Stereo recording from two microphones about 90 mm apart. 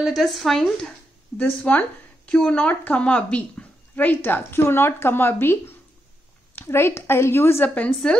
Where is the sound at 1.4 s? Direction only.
20° left (ahead or behind).